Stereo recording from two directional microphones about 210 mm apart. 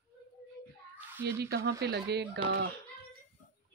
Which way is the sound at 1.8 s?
50° right (ahead or behind).